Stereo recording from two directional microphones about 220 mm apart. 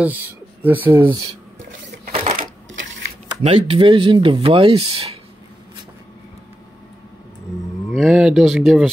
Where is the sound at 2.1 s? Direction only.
30° right (ahead or behind).